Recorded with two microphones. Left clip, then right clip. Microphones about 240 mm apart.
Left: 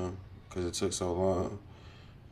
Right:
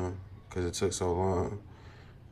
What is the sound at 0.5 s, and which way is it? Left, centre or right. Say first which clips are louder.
Speech: right 1 dB; centre.